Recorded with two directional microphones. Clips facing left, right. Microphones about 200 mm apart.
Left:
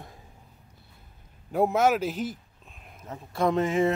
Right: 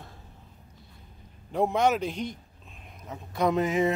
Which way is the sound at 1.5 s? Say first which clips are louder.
Left 2 dB; 5° left (ahead or behind).